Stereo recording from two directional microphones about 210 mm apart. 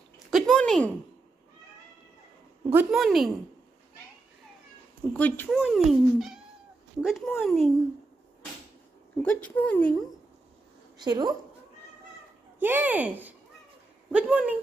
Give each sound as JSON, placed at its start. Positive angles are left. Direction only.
{"t": 0.3, "sound": "a sound", "side_deg": 0}
{"t": 2.7, "sound": "speech", "side_deg": -5}
{"t": 5.1, "sound": "speech", "side_deg": 10}
{"t": 9.2, "sound": "speech", "side_deg": 5}
{"t": 11.0, "sound": "a woman's voice", "side_deg": -20}
{"t": 12.5, "sound": "speech", "side_deg": -10}